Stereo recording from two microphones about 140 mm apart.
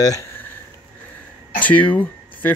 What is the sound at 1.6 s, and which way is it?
Speech, 10° left (ahead or behind).